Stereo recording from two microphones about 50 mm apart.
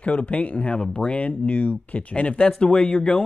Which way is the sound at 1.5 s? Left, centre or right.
Left.